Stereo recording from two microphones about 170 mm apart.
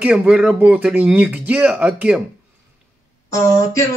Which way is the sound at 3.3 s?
20° left (ahead or behind).